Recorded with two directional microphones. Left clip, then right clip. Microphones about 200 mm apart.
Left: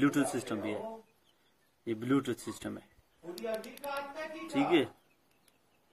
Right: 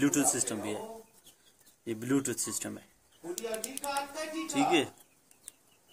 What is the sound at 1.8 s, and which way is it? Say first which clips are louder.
Speech: even; 10° right (ahead or behind).